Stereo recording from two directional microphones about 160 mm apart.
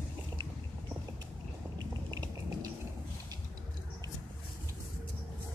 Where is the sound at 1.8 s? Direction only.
25° right (ahead or behind).